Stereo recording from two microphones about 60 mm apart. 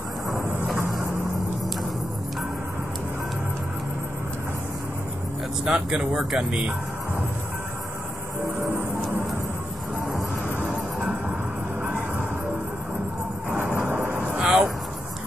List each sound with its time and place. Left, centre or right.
5.7 s speech: centre
13.6 s vehicle: right
14.2 s a sound: centre